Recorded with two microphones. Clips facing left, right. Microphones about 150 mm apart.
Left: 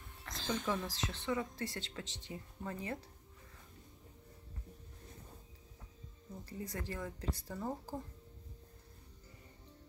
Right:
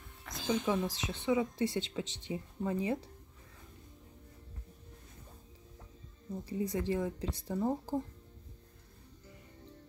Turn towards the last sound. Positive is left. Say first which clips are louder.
# right 8 dB
turn(degrees=-20)  # may be behind; listen again after turning